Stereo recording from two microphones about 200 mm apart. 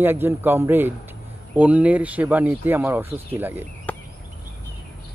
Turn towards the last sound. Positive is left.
turn(degrees=10)  # may be behind; listen again after turning